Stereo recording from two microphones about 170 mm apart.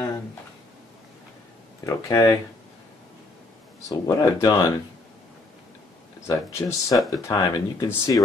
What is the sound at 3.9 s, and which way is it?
Speech, 20° left (ahead or behind).